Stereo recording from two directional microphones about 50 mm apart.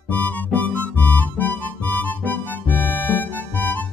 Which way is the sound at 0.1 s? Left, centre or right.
Left.